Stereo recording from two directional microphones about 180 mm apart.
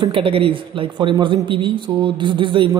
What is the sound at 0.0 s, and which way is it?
A man's voice, 30° right (ahead or behind).